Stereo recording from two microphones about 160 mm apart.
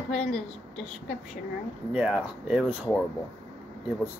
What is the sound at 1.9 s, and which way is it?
Speech, 5° right (ahead or behind).